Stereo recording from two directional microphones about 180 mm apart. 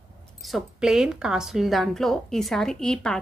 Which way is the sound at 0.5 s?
Centre (ahead or behind).